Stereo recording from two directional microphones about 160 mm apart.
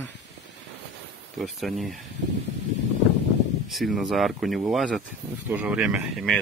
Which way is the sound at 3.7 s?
Centre (ahead or behind).